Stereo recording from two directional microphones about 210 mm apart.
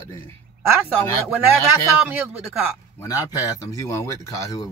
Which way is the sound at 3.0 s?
15° left (ahead or behind).